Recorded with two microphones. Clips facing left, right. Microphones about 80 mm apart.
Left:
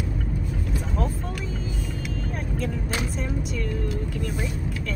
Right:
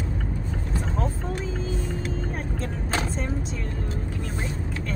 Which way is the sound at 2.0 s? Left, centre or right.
Right.